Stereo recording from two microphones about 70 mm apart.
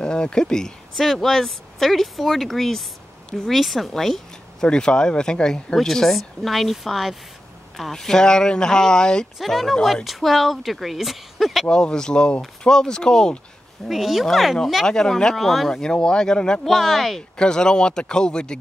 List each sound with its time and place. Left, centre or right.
0.0 s speech: centre
9.4 s speech: centre
11.6 s speech: centre
13.8 s speech: centre
14.9 s speech: centre
16.6 s speech: centre
17.4 s speech: centre